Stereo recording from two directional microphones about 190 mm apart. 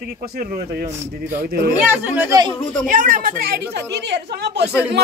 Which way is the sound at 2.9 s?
45° right (ahead or behind).